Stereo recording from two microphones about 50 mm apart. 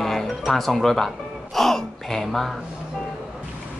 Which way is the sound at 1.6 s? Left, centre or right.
Centre.